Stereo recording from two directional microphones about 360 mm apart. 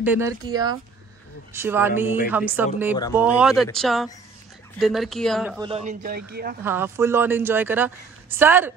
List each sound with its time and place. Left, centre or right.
0.0 s speech: centre
5.6 s a man's voice: centre
6.6 s speech: centre